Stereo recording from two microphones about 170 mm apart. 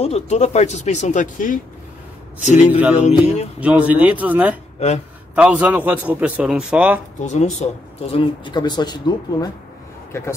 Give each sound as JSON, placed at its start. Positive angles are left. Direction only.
{"t": 0.0, "sound": "speech", "side_deg": 40}
{"t": 3.6, "sound": "a man's voice", "side_deg": -10}
{"t": 4.7, "sound": "a man's voice", "side_deg": 40}
{"t": 5.3, "sound": "a man's voice", "side_deg": -10}
{"t": 7.2, "sound": "speech", "side_deg": 45}